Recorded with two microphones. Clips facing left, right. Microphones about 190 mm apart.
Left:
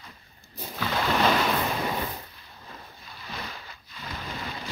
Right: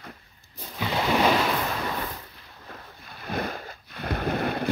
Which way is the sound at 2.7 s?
55° right (ahead or behind).